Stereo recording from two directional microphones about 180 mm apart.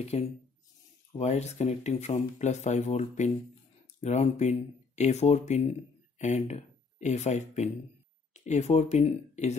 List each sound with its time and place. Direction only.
0.1 s speech: 35° left (ahead or behind)